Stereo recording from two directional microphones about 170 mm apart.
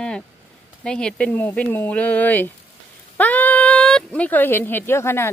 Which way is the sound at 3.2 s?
10° left (ahead or behind).